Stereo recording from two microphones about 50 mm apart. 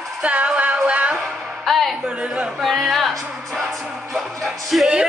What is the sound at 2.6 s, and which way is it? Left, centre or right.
Music, centre.